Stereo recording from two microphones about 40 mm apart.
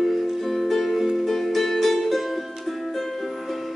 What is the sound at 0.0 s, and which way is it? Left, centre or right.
Music, centre.